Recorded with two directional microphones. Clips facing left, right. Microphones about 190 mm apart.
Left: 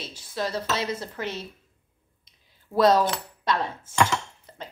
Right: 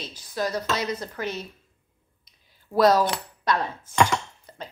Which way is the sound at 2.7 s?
25° left (ahead or behind).